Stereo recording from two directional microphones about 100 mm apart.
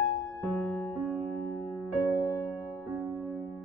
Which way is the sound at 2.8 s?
20° right (ahead or behind).